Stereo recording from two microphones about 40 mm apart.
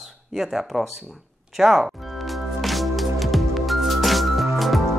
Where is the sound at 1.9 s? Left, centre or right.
Centre.